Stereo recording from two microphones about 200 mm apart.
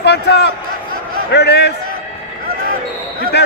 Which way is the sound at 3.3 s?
55° left (ahead or behind).